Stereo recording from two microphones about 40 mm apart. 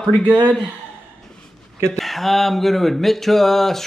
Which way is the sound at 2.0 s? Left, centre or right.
Centre.